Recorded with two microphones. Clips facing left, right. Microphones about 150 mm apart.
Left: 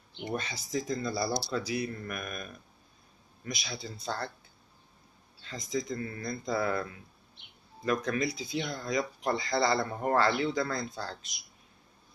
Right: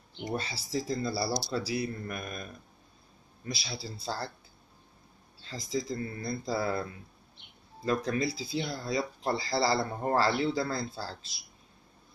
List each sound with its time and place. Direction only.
0.3 s speech: 30° right (ahead or behind)
5.4 s speech: 30° right (ahead or behind)